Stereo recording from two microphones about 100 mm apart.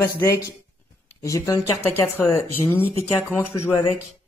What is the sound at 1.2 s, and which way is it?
Speech, 35° left (ahead or behind).